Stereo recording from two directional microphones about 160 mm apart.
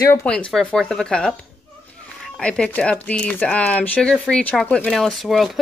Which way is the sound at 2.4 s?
5° left (ahead or behind).